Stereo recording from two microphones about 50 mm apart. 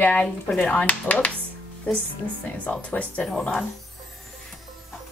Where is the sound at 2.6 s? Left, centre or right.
Left.